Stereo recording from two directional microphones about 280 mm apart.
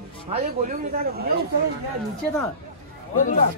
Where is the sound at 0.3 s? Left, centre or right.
Right.